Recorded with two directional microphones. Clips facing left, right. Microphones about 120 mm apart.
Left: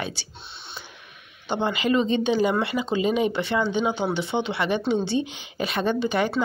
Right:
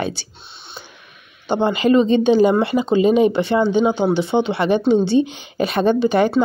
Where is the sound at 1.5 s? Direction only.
40° right (ahead or behind).